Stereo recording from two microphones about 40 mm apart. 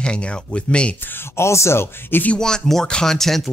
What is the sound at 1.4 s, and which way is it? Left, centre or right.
Speech, left.